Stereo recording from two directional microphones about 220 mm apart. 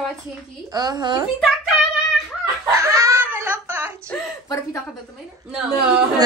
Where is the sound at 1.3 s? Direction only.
Centre (ahead or behind).